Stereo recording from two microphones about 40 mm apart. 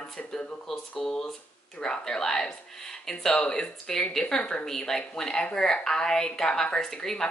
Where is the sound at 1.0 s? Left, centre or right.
Centre.